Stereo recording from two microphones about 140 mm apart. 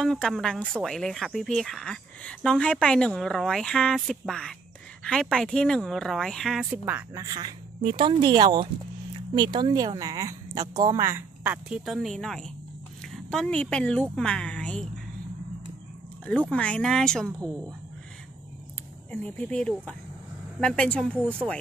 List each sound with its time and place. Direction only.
0.0 s speech: 5° left (ahead or behind)
6.7 s speech: 10° right (ahead or behind)
7.2 s a woman's voice: 30° right (ahead or behind); by 14.9 s 10° left (ahead or behind)
16.3 s speech: 10° left (ahead or behind)
19.2 s speech: 10° left (ahead or behind)